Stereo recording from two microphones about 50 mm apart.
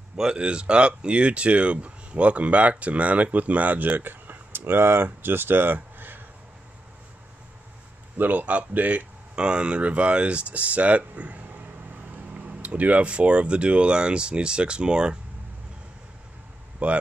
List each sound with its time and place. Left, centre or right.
0.2 s speech: centre; by 6.2 s right
8.2 s speech: right
9.3 s speech: right
16.8 s speech: right